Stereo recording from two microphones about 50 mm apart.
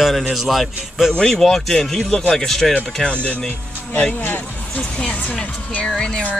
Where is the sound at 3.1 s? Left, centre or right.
Left.